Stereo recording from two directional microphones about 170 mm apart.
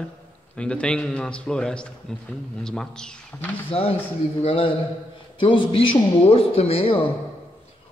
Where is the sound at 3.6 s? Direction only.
35° left (ahead or behind).